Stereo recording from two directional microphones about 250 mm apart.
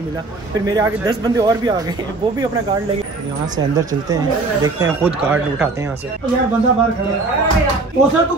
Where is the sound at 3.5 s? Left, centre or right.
Centre.